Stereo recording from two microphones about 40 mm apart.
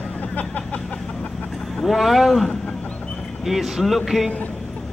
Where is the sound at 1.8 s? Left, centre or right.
Centre.